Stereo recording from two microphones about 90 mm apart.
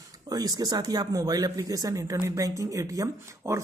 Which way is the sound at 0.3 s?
45° right (ahead or behind).